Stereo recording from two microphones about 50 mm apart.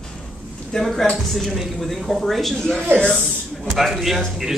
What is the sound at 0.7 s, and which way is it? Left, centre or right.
A woman's voice, centre.